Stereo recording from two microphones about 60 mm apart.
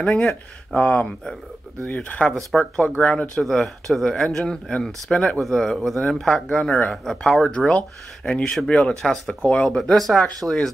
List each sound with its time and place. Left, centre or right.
0.0 s speech: centre
0.7 s speech: left
2.5 s speech: centre
3.0 s speech: centre
3.3 s speech: centre
7.4 s speech: centre